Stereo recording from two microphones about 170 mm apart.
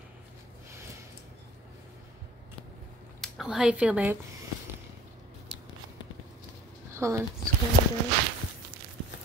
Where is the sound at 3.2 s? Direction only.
5° right (ahead or behind).